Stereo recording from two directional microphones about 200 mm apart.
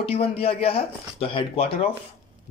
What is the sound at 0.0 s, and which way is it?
Speech, 30° left (ahead or behind).